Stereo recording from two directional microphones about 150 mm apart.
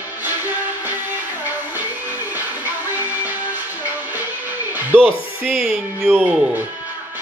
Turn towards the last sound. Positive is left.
turn(degrees=-10)  # may be behind; listen again after turning